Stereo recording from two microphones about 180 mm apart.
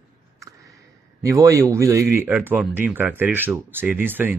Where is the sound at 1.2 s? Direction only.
15° right (ahead or behind).